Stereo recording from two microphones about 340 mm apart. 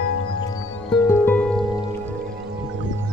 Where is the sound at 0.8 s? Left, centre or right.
Centre.